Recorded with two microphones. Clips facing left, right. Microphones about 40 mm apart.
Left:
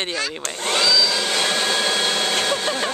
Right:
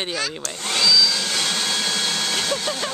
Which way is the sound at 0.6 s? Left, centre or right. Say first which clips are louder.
Even; centre.